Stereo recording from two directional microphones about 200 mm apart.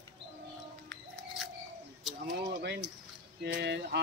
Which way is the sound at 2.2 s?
60° right (ahead or behind).